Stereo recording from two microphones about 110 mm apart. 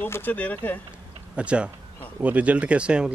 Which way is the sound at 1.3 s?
10° right (ahead or behind).